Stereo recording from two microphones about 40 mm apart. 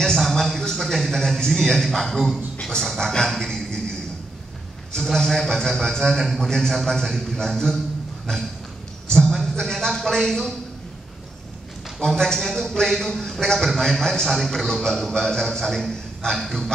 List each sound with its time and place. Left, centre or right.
0.2 s a sound: centre
2.6 s a man's voice: centre
3.3 s music: centre
5.0 s a man's voice: centre
6.9 s a man's voice: centre
9.2 s a sound: centre
12.0 s a man's voice: centre